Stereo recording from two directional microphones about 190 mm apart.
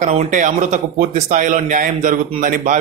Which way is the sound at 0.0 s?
40° right (ahead or behind).